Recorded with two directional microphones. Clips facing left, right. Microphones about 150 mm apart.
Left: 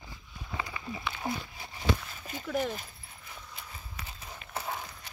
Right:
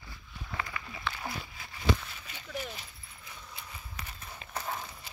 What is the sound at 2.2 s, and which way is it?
Speech, 50° left (ahead or behind).